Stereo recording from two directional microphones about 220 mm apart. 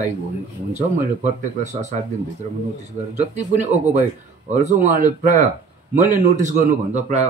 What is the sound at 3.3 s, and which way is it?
Speech, 30° right (ahead or behind).